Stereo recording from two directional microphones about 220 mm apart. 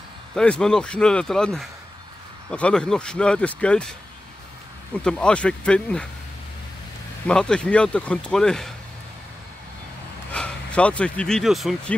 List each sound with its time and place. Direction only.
0.3 s speech: 5° left (ahead or behind)
5.0 s speech: 5° left (ahead or behind)
7.2 s speech: 5° left (ahead or behind)
10.3 s speech: 5° left (ahead or behind)